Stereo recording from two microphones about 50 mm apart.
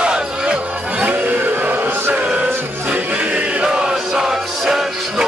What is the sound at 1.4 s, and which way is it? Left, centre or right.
Music, right.